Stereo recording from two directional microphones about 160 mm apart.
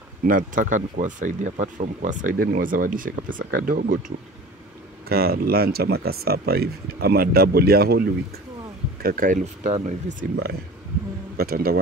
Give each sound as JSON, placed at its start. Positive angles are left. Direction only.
{"t": 0.2, "sound": "speech", "side_deg": -60}
{"t": 5.0, "sound": "speech", "side_deg": -75}
{"t": 9.0, "sound": "speech", "side_deg": -60}
{"t": 11.3, "sound": "speech", "side_deg": -70}